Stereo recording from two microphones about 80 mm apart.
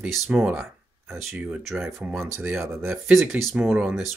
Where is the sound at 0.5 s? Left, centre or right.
Right.